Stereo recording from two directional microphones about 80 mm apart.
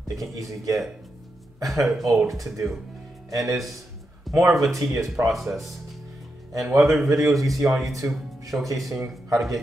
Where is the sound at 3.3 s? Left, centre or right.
Right.